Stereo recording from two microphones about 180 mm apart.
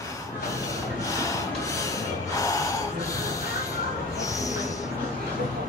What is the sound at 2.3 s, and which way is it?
Gasp, 20° left (ahead or behind).